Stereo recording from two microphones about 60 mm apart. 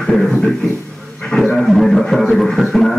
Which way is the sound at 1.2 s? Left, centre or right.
Centre.